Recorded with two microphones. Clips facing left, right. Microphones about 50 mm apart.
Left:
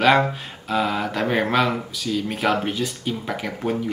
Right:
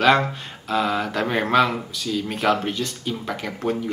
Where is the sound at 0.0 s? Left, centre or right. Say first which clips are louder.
Left 1 dB; centre.